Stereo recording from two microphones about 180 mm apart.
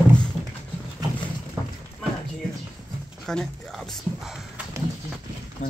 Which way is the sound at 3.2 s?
5° left (ahead or behind).